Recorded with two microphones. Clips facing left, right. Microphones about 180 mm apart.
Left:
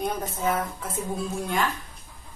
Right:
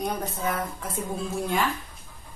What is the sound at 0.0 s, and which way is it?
Speech, centre (ahead or behind).